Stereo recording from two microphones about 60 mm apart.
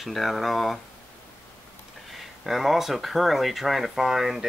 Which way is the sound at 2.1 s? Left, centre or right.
Centre.